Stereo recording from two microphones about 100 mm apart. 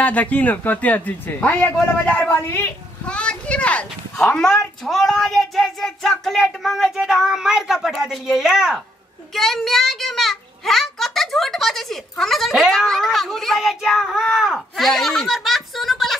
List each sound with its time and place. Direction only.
0.0 s speech: 15° left (ahead or behind)
3.1 s a child's voice: 10° left (ahead or behind)